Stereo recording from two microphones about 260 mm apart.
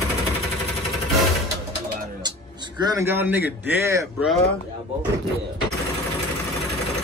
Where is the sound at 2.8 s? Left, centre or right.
Centre.